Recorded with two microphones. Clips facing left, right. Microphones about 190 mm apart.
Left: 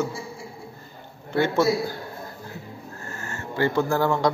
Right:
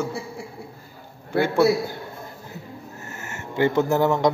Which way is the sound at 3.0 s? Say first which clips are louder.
Left 1 dB; 20° right (ahead or behind).